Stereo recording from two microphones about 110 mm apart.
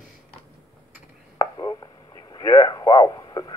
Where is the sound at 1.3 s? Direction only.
40° left (ahead or behind).